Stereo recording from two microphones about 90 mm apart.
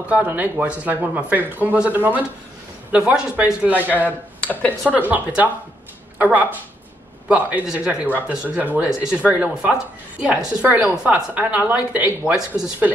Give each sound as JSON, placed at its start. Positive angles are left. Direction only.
{"t": 0.1, "sound": "speech", "side_deg": -20}
{"t": 4.4, "sound": "speech", "side_deg": 20}
{"t": 4.9, "sound": "speech", "side_deg": -20}